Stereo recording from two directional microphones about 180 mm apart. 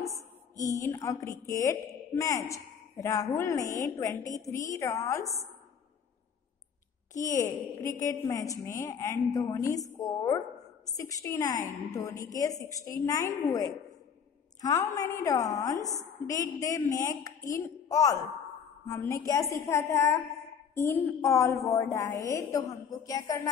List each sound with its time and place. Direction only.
0.6 s a woman's voice: 20° left (ahead or behind)
7.2 s a woman's voice: 15° left (ahead or behind)